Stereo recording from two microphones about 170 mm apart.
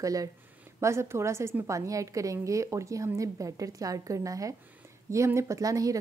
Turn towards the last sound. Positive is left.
turn(degrees=-20)  # may be behind; listen again after turning